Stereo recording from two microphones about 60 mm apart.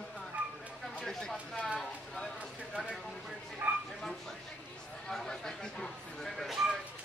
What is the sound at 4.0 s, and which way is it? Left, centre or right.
Speech, centre.